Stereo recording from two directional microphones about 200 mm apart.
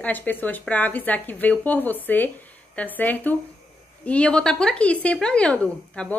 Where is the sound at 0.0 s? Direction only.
10° left (ahead or behind).